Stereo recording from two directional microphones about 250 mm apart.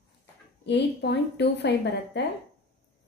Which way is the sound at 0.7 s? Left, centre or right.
Left.